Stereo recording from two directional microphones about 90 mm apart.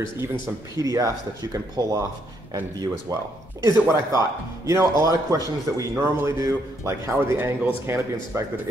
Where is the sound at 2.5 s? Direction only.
50° right (ahead or behind).